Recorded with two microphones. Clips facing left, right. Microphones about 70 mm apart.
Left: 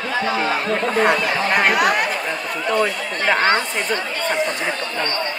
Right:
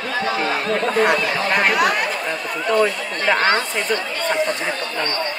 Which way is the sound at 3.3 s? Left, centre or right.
Left.